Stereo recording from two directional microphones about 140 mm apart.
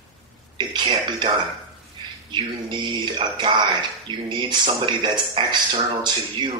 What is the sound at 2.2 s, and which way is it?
A man's voice, 35° right (ahead or behind).